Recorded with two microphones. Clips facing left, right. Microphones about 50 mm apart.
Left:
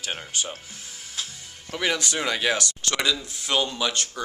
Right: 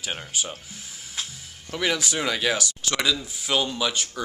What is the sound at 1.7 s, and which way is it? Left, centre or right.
Speech, centre.